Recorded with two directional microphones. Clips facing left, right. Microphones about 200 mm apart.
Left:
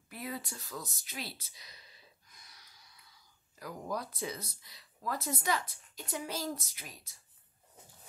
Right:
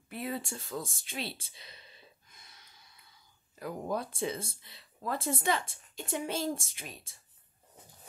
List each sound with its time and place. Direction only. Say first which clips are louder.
0.1 s speech: right 5 dB; 25° right (ahead or behind)